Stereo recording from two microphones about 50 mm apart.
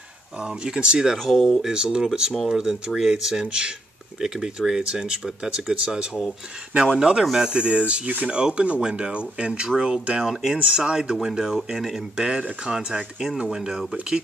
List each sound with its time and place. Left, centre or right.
0.4 s speech: centre
1.1 s speech: centre
1.6 s speech: centre